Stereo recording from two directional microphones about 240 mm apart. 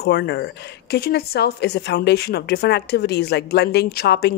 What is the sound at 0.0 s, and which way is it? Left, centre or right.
A woman's voice, left.